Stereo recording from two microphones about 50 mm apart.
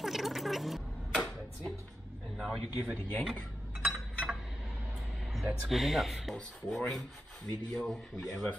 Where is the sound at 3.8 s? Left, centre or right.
Centre.